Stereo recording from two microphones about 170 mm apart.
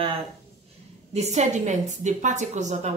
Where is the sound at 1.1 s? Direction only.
40° right (ahead or behind).